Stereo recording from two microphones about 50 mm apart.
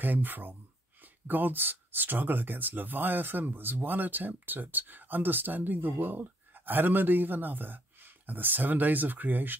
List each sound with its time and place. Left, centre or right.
0.0 s speech: right